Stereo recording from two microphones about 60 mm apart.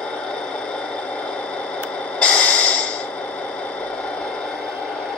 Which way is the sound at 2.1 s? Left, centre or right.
Centre.